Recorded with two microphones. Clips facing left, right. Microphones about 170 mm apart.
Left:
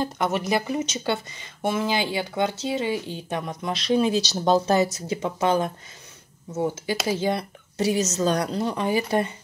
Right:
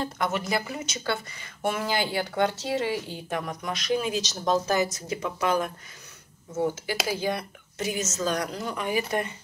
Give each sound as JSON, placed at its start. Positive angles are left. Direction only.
{"t": 0.0, "sound": "speech", "side_deg": 20}
{"t": 7.1, "sound": "a woman's voice", "side_deg": 25}